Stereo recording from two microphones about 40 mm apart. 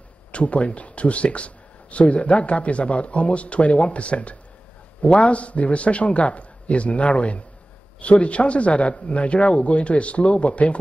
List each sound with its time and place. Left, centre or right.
0.3 s speech: left